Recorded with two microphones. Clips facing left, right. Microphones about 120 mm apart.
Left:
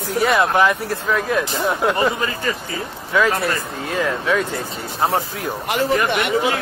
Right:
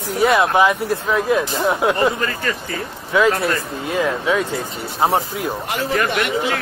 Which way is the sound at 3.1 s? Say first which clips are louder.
Right 2 dB; 15° right (ahead or behind).